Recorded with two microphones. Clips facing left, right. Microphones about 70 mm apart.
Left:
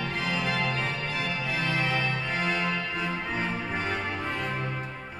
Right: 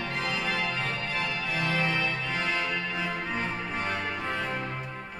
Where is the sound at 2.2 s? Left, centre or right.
Centre.